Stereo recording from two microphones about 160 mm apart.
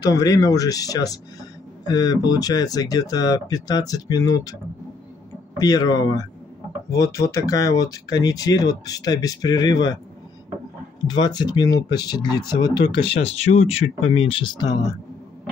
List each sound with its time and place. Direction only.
0.1 s speech: 20° left (ahead or behind)
5.6 s speech: 25° left (ahead or behind)
11.1 s speech: 25° left (ahead or behind)